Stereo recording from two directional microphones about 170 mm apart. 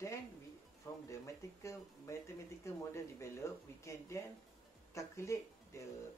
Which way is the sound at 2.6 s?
15° left (ahead or behind).